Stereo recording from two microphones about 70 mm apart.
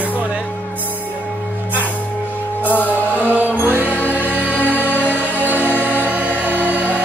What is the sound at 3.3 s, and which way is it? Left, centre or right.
Music, right.